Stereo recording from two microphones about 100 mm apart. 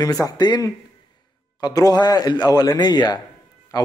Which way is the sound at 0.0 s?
40° left (ahead or behind).